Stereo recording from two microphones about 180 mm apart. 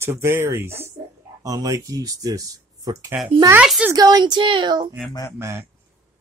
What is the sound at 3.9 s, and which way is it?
Speech, 20° right (ahead or behind).